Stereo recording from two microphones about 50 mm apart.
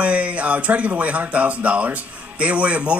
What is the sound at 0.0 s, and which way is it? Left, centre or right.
Speech, right.